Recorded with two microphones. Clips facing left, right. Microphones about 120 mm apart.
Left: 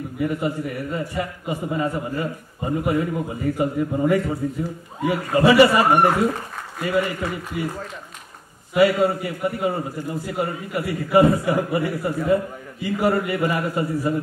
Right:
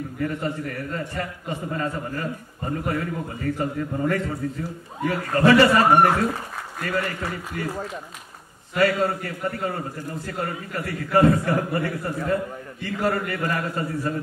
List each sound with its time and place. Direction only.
0.2 s a man's voice: 10° left (ahead or behind)
8.7 s a man's voice: 10° left (ahead or behind)